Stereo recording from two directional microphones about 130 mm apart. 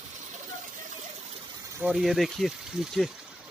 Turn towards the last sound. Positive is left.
turn(degrees=0)  # may be behind; listen again after turning